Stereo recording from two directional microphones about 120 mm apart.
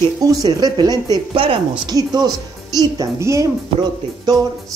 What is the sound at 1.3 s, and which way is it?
Speech, 45° right (ahead or behind).